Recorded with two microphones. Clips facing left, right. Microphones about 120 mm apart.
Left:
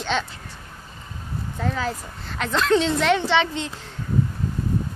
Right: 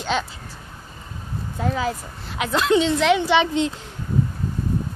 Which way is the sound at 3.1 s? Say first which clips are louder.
Right 3 dB; 15° right (ahead or behind).